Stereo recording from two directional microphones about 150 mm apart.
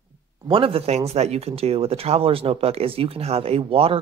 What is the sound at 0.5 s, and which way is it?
Speech, 35° right (ahead or behind).